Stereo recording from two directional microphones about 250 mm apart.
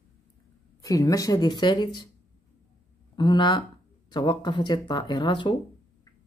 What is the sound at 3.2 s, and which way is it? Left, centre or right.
Speech, centre.